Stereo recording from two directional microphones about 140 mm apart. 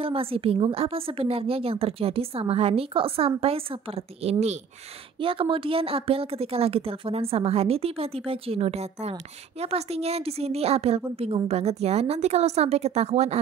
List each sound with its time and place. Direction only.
0.0 s a woman's voice: 40° right (ahead or behind)
5.2 s a woman's voice: 40° right (ahead or behind)